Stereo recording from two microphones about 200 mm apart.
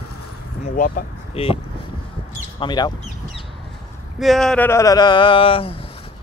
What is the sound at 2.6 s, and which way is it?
Speech, 20° left (ahead or behind).